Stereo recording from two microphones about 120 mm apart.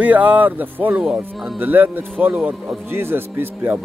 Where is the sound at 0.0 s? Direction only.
10° right (ahead or behind).